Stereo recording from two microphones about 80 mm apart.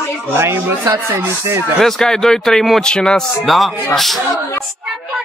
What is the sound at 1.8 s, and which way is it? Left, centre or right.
Speech, centre.